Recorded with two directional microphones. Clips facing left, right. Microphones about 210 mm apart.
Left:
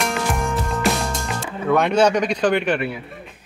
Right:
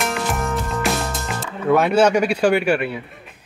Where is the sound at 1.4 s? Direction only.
5° right (ahead or behind).